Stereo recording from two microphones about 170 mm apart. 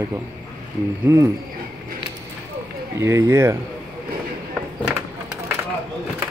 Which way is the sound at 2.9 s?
15° right (ahead or behind).